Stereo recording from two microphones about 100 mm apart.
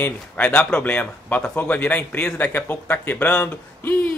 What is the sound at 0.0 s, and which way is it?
Speech, 10° left (ahead or behind).